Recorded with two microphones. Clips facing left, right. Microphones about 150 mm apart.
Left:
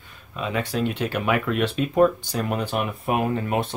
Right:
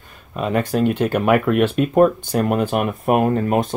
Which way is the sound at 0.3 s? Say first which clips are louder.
Right 6 dB; 45° right (ahead or behind).